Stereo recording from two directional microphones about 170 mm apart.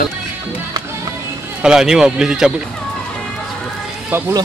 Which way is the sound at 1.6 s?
5° right (ahead or behind).